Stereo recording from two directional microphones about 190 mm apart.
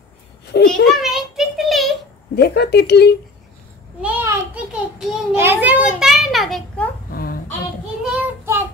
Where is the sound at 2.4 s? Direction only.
60° left (ahead or behind).